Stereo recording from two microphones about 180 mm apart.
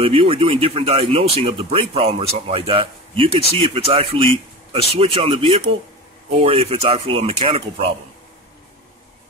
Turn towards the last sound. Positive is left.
turn(degrees=-35)  # may be behind; listen again after turning